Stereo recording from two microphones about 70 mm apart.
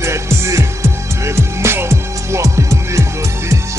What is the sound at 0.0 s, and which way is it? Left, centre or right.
Music, right.